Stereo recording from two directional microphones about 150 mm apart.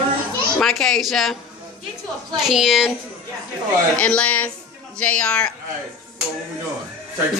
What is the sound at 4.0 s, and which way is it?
A man's voice, 10° left (ahead or behind).